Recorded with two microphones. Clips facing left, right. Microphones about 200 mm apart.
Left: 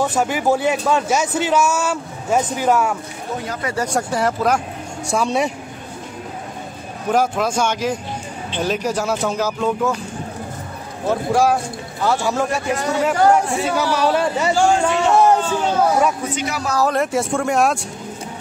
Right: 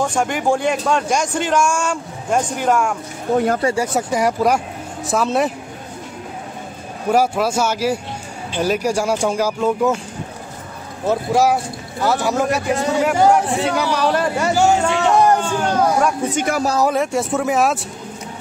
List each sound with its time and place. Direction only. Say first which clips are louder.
0.0 s a man's voice: even; 5° left (ahead or behind)
3.7 s speech: right 2 dB; 10° right (ahead or behind)
5.0 s a man's voice: right 1 dB; centre (ahead or behind)
7.1 s speech: right 2 dB; 10° right (ahead or behind)
11.1 s a man's voice: right 1 dB; 10° right (ahead or behind)
14.5 s speech: right 1 dB; 5° right (ahead or behind)
15.1 s a man's voice: even; 5° left (ahead or behind)
16.3 s a man's voice: right 5 dB; 50° right (ahead or behind)
16.9 s a man's voice: even; centre (ahead or behind)